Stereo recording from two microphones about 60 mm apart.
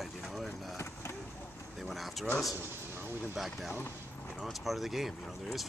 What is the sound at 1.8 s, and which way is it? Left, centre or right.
Speech, centre.